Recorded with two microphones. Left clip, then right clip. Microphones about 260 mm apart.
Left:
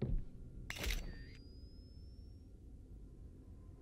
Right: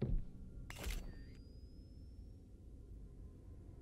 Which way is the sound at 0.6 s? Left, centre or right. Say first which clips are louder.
Left 7 dB; centre.